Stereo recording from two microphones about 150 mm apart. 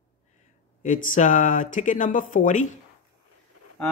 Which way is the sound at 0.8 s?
55° left (ahead or behind).